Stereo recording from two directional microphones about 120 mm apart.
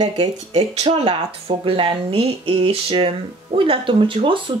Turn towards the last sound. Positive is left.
turn(degrees=-45)  # may be behind; listen again after turning